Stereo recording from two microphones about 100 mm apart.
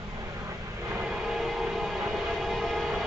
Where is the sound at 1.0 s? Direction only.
5° right (ahead or behind).